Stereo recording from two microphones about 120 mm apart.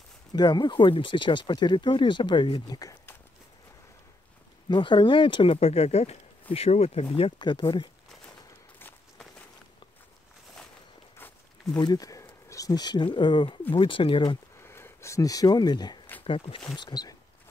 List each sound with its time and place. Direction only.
0.3 s speech: 35° left (ahead or behind)
4.6 s speech: 40° left (ahead or behind); by 7.1 s 65° left (ahead or behind)
7.2 s speech: 45° left (ahead or behind)
11.8 s speech: 30° left (ahead or behind)
14.6 s speech: 20° left (ahead or behind); by 16.0 s 35° left (ahead or behind)
16.3 s speech: 50° left (ahead or behind)
16.7 s speech: 35° left (ahead or behind)